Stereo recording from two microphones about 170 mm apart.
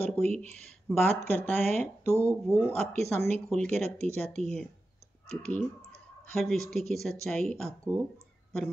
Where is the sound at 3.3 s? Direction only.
5° left (ahead or behind).